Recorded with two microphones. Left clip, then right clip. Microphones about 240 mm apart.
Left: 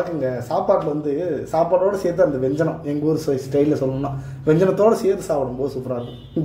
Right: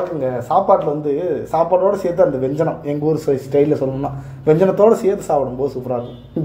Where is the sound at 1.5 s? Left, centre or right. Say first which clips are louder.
Right 3 dB; right.